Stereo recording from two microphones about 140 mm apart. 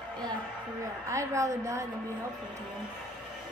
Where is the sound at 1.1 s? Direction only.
20° right (ahead or behind).